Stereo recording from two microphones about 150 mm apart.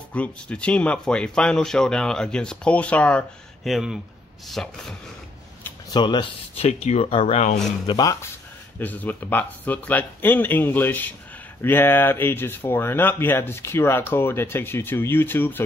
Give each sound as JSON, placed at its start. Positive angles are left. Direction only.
{"t": 0.1, "sound": "speech", "side_deg": 10}
{"t": 5.9, "sound": "speech", "side_deg": 30}
{"t": 7.8, "sound": "speech", "side_deg": 30}
{"t": 8.7, "sound": "speech", "side_deg": 10}